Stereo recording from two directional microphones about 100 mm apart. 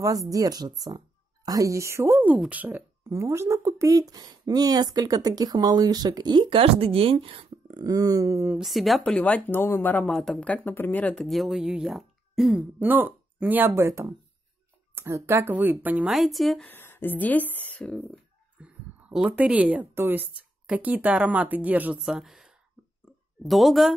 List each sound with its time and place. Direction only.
0.0 s speech: 35° right (ahead or behind); by 7.4 s 65° right (ahead or behind)
7.6 s speech: 40° right (ahead or behind)
8.5 s speech: centre (ahead or behind)
9.0 s speech: 10° left (ahead or behind)
10.1 s speech: 5° left (ahead or behind)
11.2 s speech: centre (ahead or behind)
12.8 s speech: 20° right (ahead or behind)
16.1 s speech: centre (ahead or behind)
16.6 s speech: 20° left (ahead or behind)
18.6 s speech: 15° right (ahead or behind)
22.0 s speech: 5° right (ahead or behind)